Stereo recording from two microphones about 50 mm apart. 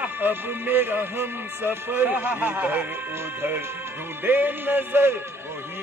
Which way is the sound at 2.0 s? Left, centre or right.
Right.